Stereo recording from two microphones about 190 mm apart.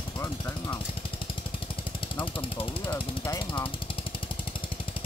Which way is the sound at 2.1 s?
30° left (ahead or behind).